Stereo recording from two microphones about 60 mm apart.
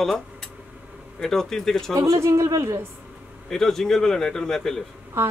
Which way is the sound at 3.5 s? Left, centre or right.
Centre.